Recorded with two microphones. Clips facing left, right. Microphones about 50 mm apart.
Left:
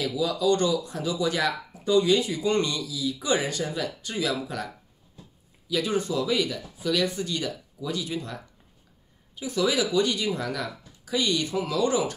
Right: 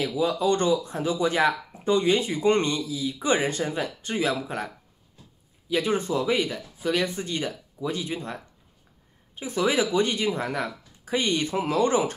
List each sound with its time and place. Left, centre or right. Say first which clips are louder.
0.0 s speech: right 1 dB; right
5.7 s speech: right 2 dB; right